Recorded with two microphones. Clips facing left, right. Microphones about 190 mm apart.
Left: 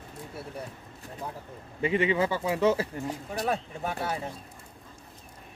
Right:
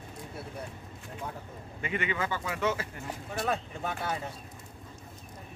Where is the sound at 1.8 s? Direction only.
30° left (ahead or behind).